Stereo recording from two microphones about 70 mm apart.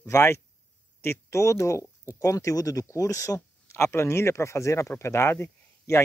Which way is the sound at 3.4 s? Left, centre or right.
Left.